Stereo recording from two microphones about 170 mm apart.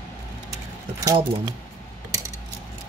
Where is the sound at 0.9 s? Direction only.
20° right (ahead or behind).